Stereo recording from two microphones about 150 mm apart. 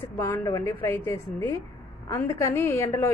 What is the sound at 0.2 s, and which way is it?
A woman's voice, 20° left (ahead or behind).